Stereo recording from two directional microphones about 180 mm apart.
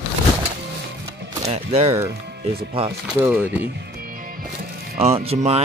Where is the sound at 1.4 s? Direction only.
35° right (ahead or behind).